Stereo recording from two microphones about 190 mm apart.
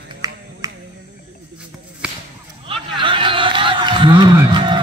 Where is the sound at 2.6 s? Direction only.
25° right (ahead or behind).